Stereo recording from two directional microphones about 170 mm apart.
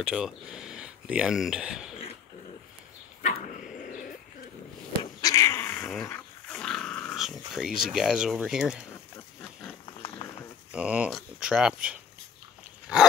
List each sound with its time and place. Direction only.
0.0 s speech: 5° right (ahead or behind)
3.2 s dog: 50° left (ahead or behind)
5.0 s cat: 20° left (ahead or behind)
6.0 s speech: 10° left (ahead or behind)
10.7 s speech: 5° right (ahead or behind)
12.9 s dog: 5° right (ahead or behind)